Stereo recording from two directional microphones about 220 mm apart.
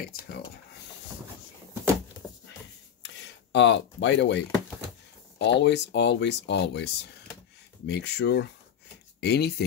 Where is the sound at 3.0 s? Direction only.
55° left (ahead or behind).